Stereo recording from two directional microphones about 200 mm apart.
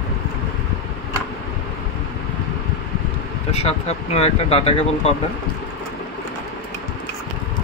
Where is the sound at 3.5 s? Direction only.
30° left (ahead or behind).